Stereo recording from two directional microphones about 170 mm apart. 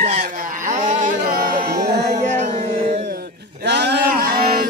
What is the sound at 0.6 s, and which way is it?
Music, 50° right (ahead or behind).